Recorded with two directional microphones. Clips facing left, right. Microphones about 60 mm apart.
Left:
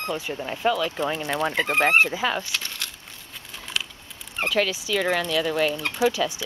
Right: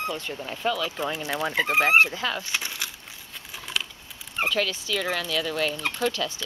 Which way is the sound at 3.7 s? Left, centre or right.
Centre.